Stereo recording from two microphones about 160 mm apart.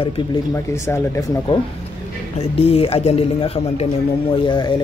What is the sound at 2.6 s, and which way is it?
Speech, 40° left (ahead or behind).